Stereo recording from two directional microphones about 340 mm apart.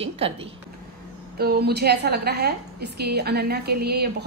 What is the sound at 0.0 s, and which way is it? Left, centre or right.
Speech, centre.